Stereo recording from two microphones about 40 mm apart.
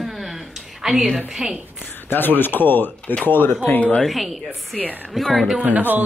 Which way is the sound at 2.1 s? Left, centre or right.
Left.